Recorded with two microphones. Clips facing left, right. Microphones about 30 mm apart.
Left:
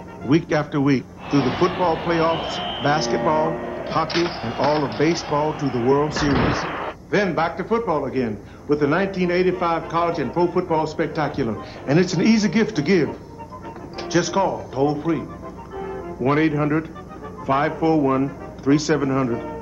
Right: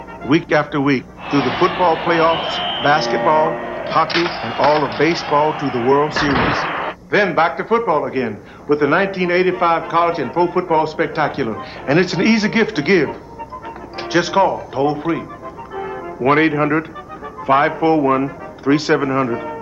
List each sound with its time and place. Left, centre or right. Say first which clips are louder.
0.3 s speech: right 4 dB; right
15.7 s music: right 4 dB; right
17.5 s speech: right 5 dB; right